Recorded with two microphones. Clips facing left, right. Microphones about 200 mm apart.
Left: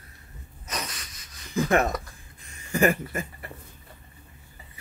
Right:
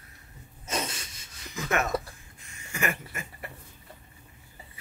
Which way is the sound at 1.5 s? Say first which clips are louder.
Left 6 dB; 30° left (ahead or behind).